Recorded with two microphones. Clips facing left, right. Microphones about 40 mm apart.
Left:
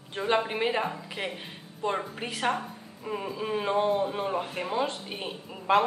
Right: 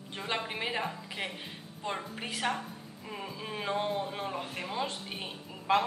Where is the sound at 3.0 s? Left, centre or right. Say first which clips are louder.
Left 8 dB; centre.